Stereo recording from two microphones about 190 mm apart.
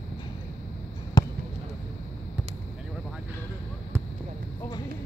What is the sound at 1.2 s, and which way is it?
Basketball bounce, 20° left (ahead or behind).